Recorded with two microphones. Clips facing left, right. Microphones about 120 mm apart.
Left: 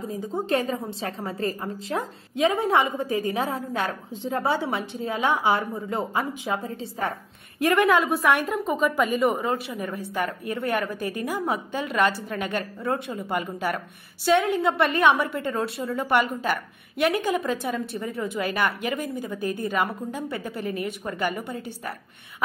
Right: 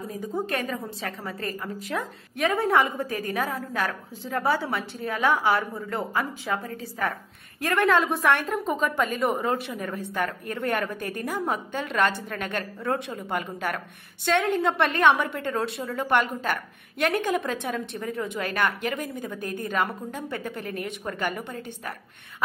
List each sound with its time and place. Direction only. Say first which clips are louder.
0.1 s a woman's voice: left 4 dB; 30° left (ahead or behind)
2.3 s a woman's voice: left 1 dB; 20° left (ahead or behind)
7.6 s a woman's voice: left 2 dB; 15° left (ahead or behind)
8.5 s a woman's voice: left 2 dB; centre (ahead or behind)